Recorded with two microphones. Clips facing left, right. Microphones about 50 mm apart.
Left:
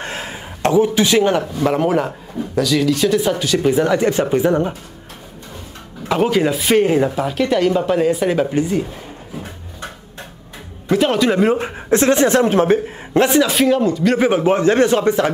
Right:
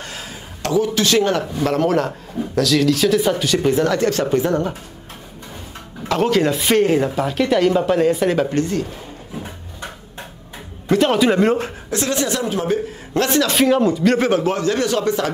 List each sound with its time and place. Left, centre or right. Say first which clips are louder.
0.0 s a sound: left 5 dB; left; by 1.4 s centre
1.6 s speech: even; centre
3.7 s speech: left 2 dB; centre
6.0 s speech: left 1 dB; centre
10.9 s speech: even; centre
11.9 s a woman's voice: left 8 dB; left
13.1 s a man's voice: left 4 dB; centre
13.5 s speech: even; centre
14.1 s a man's voice: left 3 dB; centre